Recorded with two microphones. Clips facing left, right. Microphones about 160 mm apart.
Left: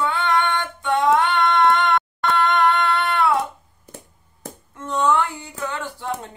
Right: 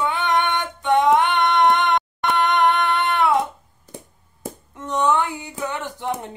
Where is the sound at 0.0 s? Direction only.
20° right (ahead or behind).